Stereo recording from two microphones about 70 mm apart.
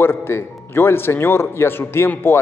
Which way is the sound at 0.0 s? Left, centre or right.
Left.